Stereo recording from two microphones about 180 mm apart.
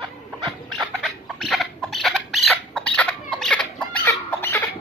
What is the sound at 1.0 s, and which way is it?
Rodents, centre (ahead or behind).